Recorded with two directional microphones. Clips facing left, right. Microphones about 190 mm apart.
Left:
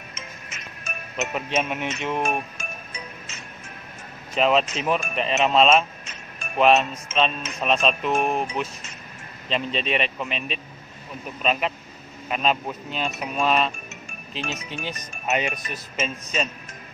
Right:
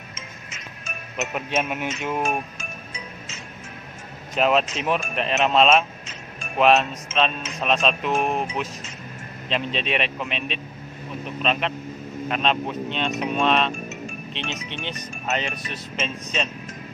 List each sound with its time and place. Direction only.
1.1 s speech: centre (ahead or behind)
4.4 s speech: centre (ahead or behind)
12.3 s speech: 5° left (ahead or behind)